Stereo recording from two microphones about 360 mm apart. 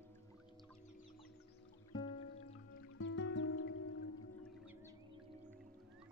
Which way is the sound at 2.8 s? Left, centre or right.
Left.